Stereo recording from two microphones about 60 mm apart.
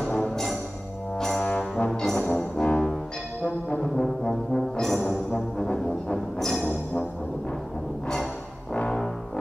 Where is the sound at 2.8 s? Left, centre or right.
Centre.